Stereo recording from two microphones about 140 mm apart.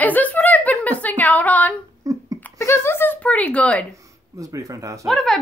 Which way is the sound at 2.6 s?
20° left (ahead or behind).